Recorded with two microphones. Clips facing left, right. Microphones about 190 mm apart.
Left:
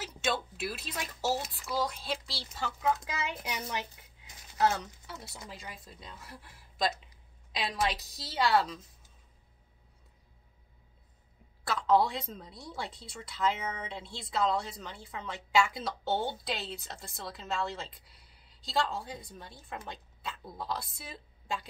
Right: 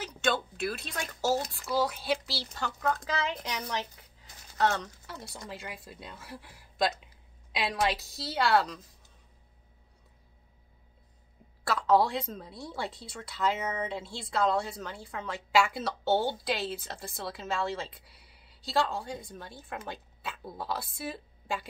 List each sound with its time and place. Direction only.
0.0 s speech: 5° left (ahead or behind)
5.5 s speech: 65° right (ahead or behind)
5.9 s speech: 5° right (ahead or behind)
11.6 s speech: centre (ahead or behind)